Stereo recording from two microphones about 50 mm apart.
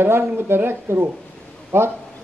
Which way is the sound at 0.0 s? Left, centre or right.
Right.